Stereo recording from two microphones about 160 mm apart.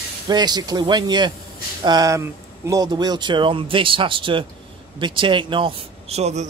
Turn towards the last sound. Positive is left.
turn(degrees=-45)  # may be behind; listen again after turning